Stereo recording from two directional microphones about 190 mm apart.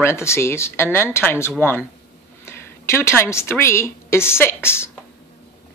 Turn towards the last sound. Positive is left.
turn(degrees=15)  # may be behind; listen again after turning